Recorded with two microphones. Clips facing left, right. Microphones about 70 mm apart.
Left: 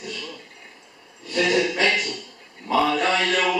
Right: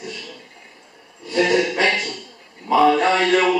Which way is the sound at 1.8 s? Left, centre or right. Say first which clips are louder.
Right 2 dB; right.